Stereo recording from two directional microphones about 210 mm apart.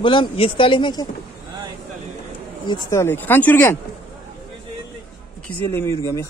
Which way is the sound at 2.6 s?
15° left (ahead or behind).